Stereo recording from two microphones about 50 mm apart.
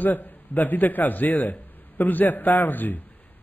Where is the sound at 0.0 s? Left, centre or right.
Left.